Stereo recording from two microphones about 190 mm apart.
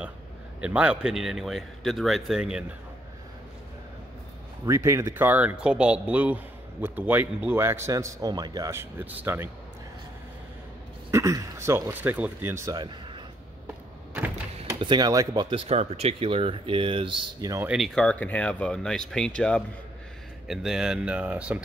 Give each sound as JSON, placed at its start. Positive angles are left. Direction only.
{"t": 0.6, "sound": "a man's voice", "side_deg": -5}
{"t": 4.6, "sound": "speech", "side_deg": -15}
{"t": 11.1, "sound": "speech", "side_deg": -15}
{"t": 14.8, "sound": "speech", "side_deg": -25}
{"t": 15.7, "sound": "speech", "side_deg": -35}
{"t": 17.6, "sound": "a man's voice", "side_deg": 0}